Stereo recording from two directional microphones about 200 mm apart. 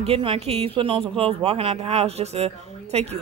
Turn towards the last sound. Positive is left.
turn(degrees=-30)  # may be behind; listen again after turning